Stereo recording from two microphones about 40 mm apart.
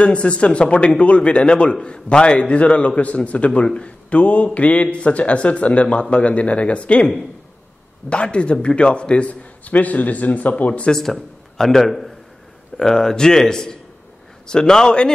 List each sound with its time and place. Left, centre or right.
0.0 s a man's voice: left
3.6 s a man's voice: left
4.1 s speech: left
8.1 s a man's voice: left
10.9 s a man's voice: centre
12.7 s a man's voice: centre